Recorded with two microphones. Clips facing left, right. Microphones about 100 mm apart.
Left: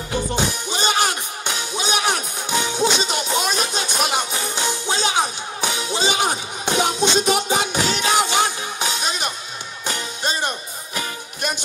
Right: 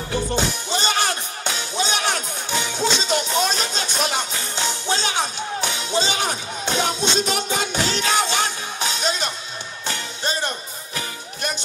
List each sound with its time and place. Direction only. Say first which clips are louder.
0.7 s music: left 3 dB; 15° left (ahead or behind)